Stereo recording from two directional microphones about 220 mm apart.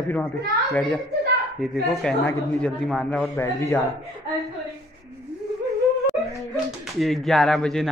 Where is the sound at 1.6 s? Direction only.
Centre (ahead or behind).